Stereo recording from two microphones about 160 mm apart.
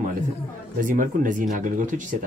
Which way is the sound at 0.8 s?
55° right (ahead or behind).